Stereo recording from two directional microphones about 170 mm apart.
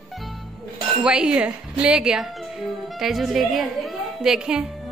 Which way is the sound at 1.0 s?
5° right (ahead or behind).